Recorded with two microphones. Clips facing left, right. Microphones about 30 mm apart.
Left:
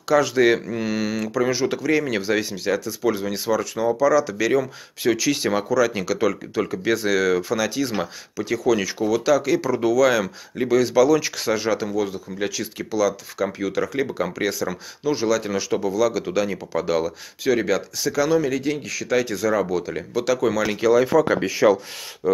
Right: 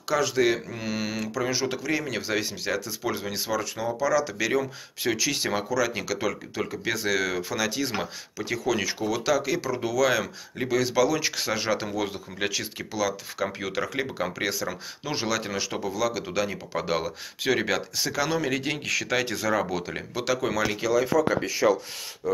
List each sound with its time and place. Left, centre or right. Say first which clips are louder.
0.1 s speech: left 6 dB; centre
0.5 s mantra: left 6 dB; centre
0.9 s speech: left 5 dB; centre
11.8 s speech: left 5 dB; right
12.7 s speech: left 6 dB; centre
14.1 s speech: left 4 dB; centre
15.0 s speech: left 7 dB; right
15.5 s speech: left 7 dB; centre
16.7 s speech: left 6 dB; right
18.6 s speech: left 2 dB; right
19.4 s speech: left 5 dB; right
20.8 s mantra: left 8 dB; centre
21.3 s speech: left 5 dB; left